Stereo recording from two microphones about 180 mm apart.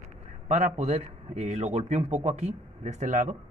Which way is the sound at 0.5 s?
40° right (ahead or behind).